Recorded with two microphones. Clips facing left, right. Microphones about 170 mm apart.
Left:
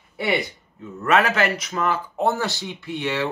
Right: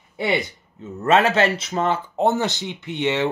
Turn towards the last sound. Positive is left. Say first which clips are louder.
# right 3 dB
turn(degrees=-20)  # may be behind; listen again after turning